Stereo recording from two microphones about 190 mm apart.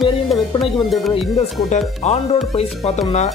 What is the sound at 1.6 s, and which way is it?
Speech, 35° left (ahead or behind).